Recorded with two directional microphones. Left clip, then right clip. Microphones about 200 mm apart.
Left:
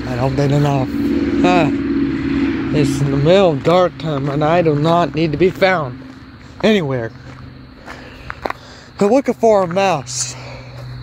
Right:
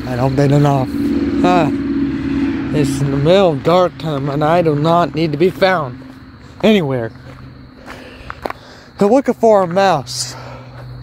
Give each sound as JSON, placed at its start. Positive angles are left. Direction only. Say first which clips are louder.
{"t": 0.2, "sound": "speech", "louder": "right 3 dB", "side_deg": -35}
{"t": 1.1, "sound": "vehicle", "louder": "left 1 dB", "side_deg": -55}
{"t": 1.4, "sound": "speech", "louder": "right 1 dB", "side_deg": -10}
{"t": 1.8, "sound": "vehicle", "louder": "even", "side_deg": -40}
{"t": 2.7, "sound": "speech", "louder": "even", "side_deg": 0}
{"t": 6.6, "sound": "speech", "louder": "right 2 dB", "side_deg": -25}
{"t": 8.3, "sound": "a sound", "louder": "left 1 dB", "side_deg": 0}
{"t": 8.9, "sound": "speech", "louder": "right 1 dB", "side_deg": -15}